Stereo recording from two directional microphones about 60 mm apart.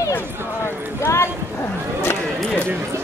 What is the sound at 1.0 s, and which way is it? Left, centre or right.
Clip-clop, left.